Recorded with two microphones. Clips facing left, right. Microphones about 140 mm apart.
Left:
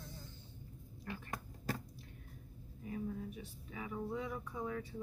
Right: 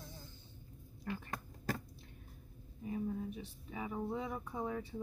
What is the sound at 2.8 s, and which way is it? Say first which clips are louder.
Speech: right 3 dB; 25° right (ahead or behind).